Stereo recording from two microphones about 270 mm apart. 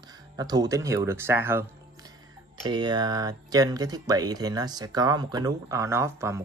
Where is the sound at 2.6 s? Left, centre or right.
Centre.